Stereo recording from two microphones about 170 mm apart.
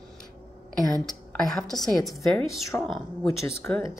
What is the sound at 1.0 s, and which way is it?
A woman's voice, centre (ahead or behind).